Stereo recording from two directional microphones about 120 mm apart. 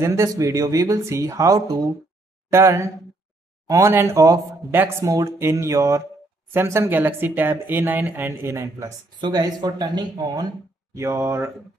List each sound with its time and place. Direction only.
0.0 s speech: 25° right (ahead or behind)
9.2 s speech: 35° right (ahead or behind)
11.0 s speech: 20° right (ahead or behind)